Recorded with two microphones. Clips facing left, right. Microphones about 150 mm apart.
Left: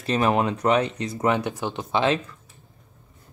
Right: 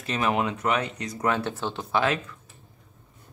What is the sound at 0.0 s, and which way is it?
Speech, 35° left (ahead or behind).